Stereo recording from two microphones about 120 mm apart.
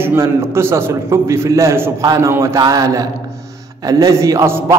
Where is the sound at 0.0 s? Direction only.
20° right (ahead or behind).